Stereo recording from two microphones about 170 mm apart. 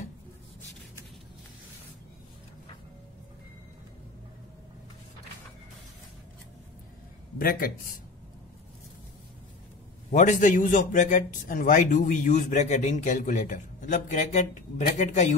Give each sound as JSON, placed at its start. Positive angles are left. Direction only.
{"t": 7.3, "sound": "a man's voice", "side_deg": 55}
{"t": 10.1, "sound": "a man's voice", "side_deg": 50}